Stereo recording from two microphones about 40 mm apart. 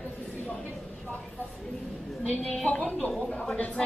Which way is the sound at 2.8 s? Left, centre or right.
Centre.